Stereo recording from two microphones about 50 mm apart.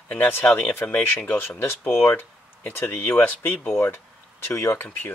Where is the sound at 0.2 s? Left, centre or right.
Left.